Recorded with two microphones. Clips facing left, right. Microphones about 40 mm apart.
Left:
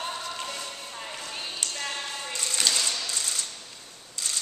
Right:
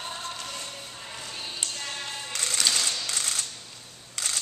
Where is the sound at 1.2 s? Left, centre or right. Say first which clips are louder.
Right 1 dB; centre.